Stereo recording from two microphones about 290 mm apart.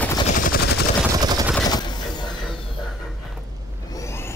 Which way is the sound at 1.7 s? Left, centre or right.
Centre.